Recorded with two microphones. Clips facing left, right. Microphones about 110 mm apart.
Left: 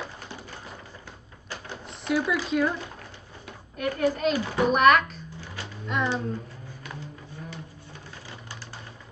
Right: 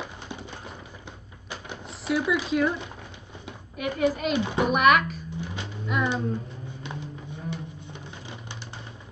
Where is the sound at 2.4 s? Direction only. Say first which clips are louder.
Right 1 dB; centre (ahead or behind).